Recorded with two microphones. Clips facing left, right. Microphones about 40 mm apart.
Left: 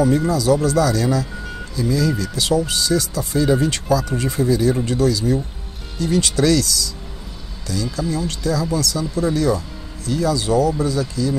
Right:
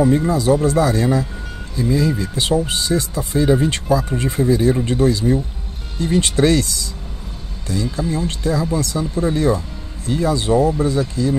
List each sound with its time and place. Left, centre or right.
0.0 s speech: right